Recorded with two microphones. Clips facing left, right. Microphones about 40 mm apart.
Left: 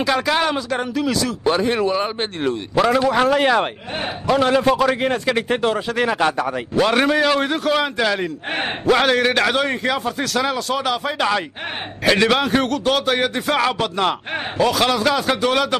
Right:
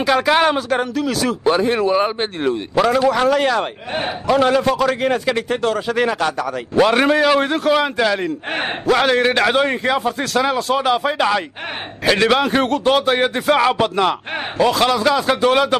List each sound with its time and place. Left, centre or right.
0.0 s speech: centre
1.4 s a man's voice: centre
4.3 s a man's voice: centre
5.5 s speech: centre
5.9 s a man's voice: centre
6.1 s speech: centre
6.7 s a man's voice: centre
12.6 s a man's voice: centre